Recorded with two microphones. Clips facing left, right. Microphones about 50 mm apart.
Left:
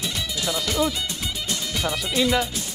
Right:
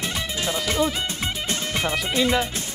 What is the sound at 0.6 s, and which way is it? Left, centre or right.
Speech, right.